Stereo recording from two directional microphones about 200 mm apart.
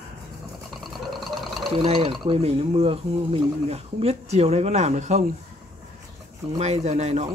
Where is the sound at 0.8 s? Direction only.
Centre (ahead or behind).